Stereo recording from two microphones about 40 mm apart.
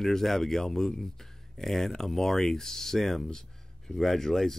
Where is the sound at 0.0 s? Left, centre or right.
Centre.